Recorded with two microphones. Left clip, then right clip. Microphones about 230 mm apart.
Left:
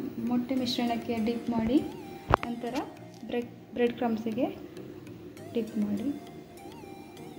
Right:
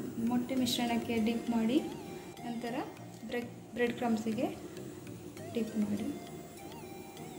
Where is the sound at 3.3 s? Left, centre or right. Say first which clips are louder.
Left 5 dB; left.